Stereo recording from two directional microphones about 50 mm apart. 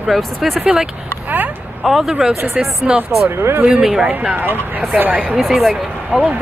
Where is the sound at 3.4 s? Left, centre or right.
Right.